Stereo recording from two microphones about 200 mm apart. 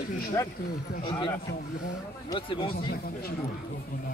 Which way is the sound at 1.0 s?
25° left (ahead or behind).